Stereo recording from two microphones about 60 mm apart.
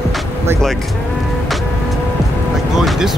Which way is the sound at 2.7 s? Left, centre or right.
Centre.